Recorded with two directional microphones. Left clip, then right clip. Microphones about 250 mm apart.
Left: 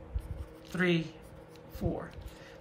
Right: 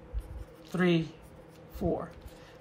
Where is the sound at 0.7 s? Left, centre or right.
Centre.